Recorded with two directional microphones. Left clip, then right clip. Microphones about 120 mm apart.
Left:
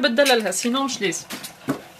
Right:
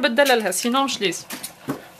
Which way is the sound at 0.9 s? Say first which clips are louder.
Right 1 dB; 55° right (ahead or behind).